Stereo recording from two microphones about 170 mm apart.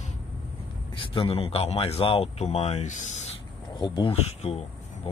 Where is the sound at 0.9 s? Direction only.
30° left (ahead or behind).